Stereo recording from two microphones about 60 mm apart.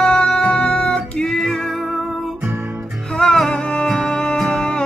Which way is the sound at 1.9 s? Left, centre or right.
Centre.